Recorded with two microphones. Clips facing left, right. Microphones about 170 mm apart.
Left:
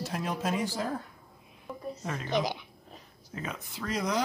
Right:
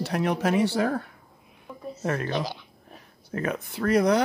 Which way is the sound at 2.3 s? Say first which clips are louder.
Even; 15° left (ahead or behind).